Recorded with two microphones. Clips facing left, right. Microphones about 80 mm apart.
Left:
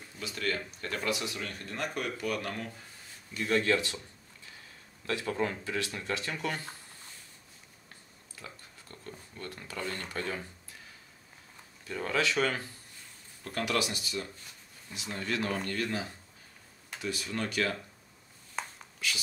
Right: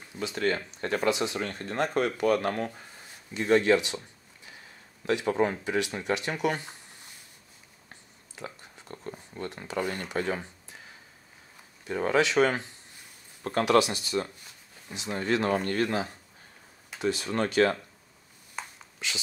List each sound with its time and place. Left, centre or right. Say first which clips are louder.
0.2 s speech: right 6 dB; right
3.3 s speech: right 6 dB; right
5.0 s speech: right 6 dB; right
7.9 s a sound: right 4 dB; right
11.8 s speech: right 6 dB; right
13.4 s speech: right 8 dB; right
14.2 s speech: right 9 dB; right
14.9 s speech: right 7 dB; right
15.7 s speech: right 6 dB; right
17.0 s speech: right 7 dB; right
18.6 s a sound: left 1 dB; centre
19.0 s speech: even; right